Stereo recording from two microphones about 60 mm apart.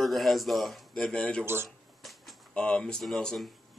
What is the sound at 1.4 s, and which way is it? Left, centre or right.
Speech, right.